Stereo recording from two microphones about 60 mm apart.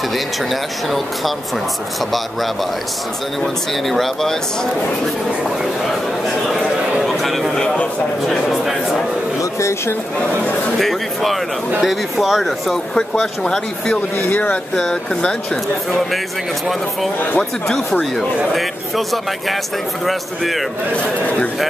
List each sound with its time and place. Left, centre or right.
0.5 s speech: centre
3.9 s speech: centre
5.9 s speech: centre
7.0 s a sound: centre
8.3 s speech: centre
9.4 s speech: left
10.8 s speech: centre
14.1 s speech: left
14.8 s speech: centre
17.4 s speech: centre
20.1 s speech: centre
20.9 s speech: centre